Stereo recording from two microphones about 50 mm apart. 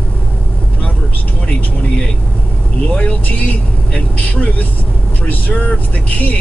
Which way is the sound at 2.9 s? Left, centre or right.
Left.